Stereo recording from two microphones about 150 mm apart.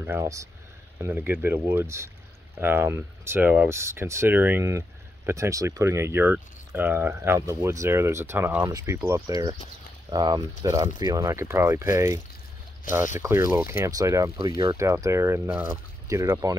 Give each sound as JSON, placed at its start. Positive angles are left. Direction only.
{"t": 0.0, "sound": "speech", "side_deg": -15}
{"t": 16.1, "sound": "speech", "side_deg": -20}